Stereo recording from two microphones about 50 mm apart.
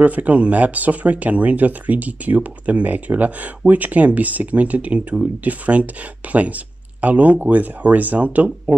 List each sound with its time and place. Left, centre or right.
0.0 s speech: right